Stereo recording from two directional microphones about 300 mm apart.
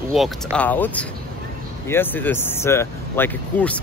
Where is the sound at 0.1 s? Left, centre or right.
Centre.